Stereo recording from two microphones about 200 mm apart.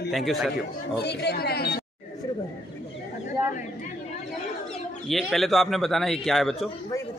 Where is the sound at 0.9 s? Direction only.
55° left (ahead or behind).